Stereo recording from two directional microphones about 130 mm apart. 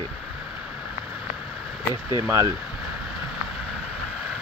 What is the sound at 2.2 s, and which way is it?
Speech, 25° right (ahead or behind).